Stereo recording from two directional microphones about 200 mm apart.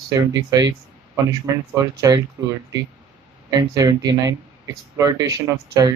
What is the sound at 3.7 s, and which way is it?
Speech, 15° right (ahead or behind).